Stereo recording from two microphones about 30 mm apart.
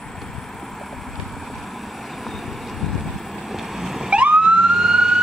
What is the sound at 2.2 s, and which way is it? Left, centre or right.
Vehicle, centre.